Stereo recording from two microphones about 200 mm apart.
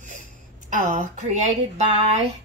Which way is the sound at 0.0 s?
35° right (ahead or behind).